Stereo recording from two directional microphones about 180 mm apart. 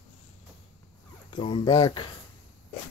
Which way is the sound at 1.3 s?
25° left (ahead or behind).